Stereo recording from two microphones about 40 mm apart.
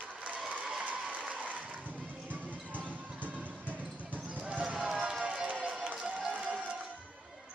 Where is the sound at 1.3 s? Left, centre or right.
Right.